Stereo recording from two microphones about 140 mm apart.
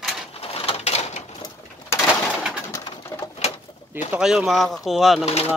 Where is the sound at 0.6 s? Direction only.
45° left (ahead or behind).